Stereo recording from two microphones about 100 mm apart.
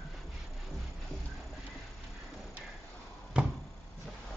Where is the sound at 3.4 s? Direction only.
10° right (ahead or behind).